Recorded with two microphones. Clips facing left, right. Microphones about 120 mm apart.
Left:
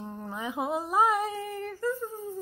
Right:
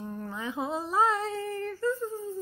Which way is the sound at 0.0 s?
20° left (ahead or behind).